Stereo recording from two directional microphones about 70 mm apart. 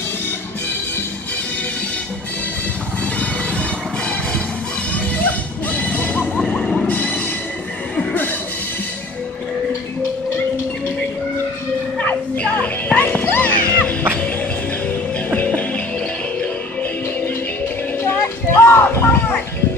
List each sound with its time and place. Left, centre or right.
5.2 s music: left
6.4 s vehicle: centre
6.9 s train: left
7.9 s music: left
12.0 s music: centre
15.2 s music: left
18.2 s a sound: left